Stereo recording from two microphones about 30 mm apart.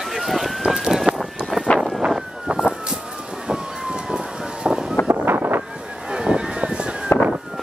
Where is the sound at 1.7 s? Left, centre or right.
Left.